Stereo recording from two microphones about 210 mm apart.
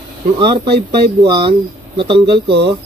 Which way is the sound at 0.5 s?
50° right (ahead or behind).